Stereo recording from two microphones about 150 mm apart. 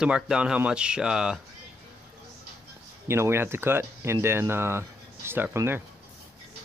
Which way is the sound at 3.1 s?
15° right (ahead or behind).